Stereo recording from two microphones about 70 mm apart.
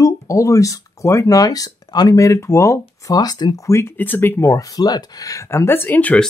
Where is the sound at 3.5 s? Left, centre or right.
Left.